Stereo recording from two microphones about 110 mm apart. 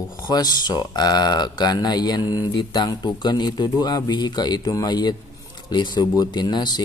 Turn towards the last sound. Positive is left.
turn(degrees=40)  # may be behind; listen again after turning